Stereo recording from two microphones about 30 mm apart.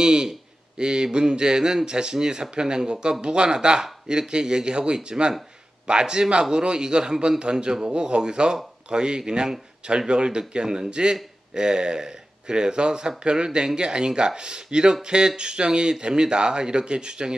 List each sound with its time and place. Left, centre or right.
0.0 s speech: right